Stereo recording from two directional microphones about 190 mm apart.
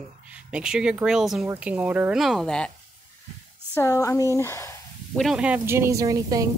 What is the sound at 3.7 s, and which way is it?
Speech, 15° left (ahead or behind).